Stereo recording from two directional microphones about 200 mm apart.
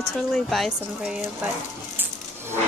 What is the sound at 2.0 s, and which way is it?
Music, 10° right (ahead or behind).